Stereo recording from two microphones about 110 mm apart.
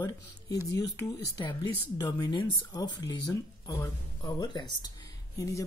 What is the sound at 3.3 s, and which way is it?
Speech, 30° left (ahead or behind).